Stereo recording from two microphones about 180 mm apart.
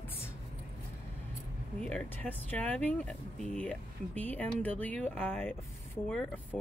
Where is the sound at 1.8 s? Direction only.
10° left (ahead or behind).